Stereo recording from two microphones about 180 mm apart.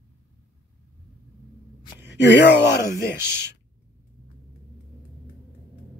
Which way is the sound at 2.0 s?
75° left (ahead or behind).